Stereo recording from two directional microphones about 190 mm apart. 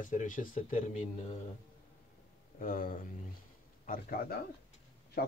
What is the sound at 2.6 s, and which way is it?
Speech, 45° left (ahead or behind).